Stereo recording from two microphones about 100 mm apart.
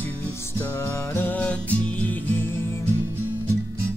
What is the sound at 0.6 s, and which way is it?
Music, 25° left (ahead or behind).